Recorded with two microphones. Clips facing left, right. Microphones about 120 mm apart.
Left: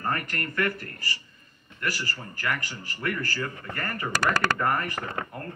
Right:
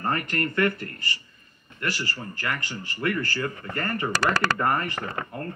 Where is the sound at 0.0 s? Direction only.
25° right (ahead or behind).